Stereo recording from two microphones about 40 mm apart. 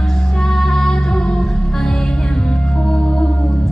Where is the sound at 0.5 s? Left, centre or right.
Centre.